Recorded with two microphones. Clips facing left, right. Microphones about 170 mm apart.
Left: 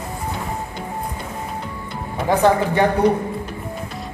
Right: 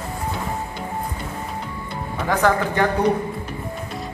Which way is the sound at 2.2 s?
25° left (ahead or behind).